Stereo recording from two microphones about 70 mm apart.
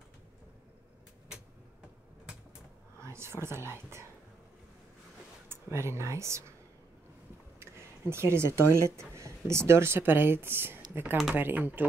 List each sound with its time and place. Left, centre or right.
3.0 s speech: right
5.5 s speech: right
7.6 s speech: right